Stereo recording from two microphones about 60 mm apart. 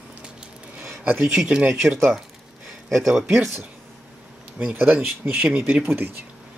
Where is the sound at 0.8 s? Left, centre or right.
Right.